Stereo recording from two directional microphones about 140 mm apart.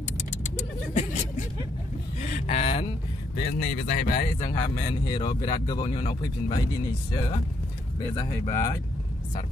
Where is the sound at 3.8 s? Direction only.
90° left.